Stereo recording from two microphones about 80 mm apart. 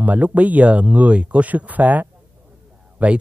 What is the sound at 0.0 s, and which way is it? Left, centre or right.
Speech, centre.